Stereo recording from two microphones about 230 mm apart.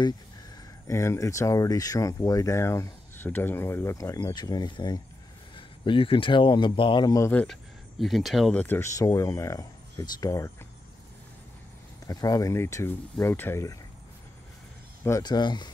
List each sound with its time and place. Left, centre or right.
0.8 s speech: centre
12.1 s speech: centre
15.0 s speech: centre